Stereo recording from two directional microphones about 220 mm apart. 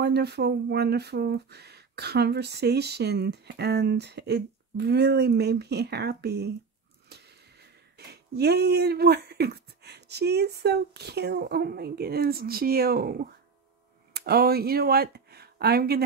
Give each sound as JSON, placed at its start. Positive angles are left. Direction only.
{"t": 0.0, "sound": "speech", "side_deg": -50}
{"t": 7.1, "sound": "wheeze", "side_deg": -50}
{"t": 8.0, "sound": "speech", "side_deg": -45}